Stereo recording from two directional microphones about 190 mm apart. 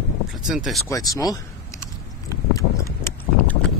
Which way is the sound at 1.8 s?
15° left (ahead or behind).